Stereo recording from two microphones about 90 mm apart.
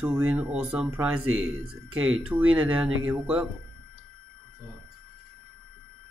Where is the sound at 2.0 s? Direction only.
15° right (ahead or behind).